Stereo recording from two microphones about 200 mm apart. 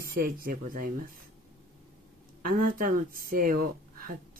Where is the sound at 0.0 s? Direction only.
50° right (ahead or behind).